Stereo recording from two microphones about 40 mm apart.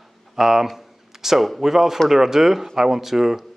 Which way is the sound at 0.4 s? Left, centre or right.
Centre.